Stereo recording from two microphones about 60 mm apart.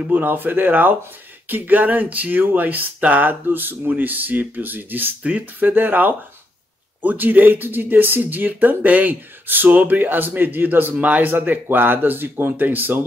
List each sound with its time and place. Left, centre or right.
0.0 s speech: right